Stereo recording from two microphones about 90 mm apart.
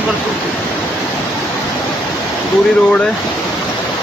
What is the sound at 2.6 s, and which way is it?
Speech, 10° left (ahead or behind).